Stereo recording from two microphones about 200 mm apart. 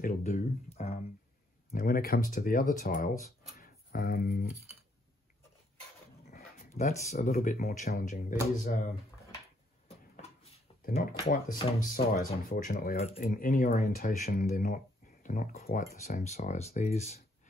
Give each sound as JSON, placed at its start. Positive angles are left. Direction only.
{"t": 0.0, "sound": "speech", "side_deg": 35}
{"t": 1.7, "sound": "speech", "side_deg": 45}
{"t": 3.5, "sound": "a sound", "side_deg": 45}
{"t": 6.8, "sound": "speech", "side_deg": 35}
{"t": 7.3, "sound": "speech", "side_deg": 45}
{"t": 10.8, "sound": "speech", "side_deg": 45}
{"t": 12.9, "sound": "speech", "side_deg": 35}
{"t": 13.2, "sound": "speech", "side_deg": 45}
{"t": 16.0, "sound": "speech", "side_deg": 35}